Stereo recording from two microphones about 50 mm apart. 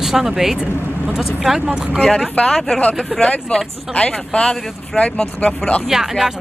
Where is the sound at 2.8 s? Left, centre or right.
Left.